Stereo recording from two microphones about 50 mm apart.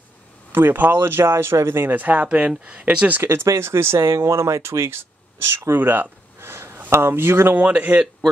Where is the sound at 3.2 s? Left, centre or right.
Right.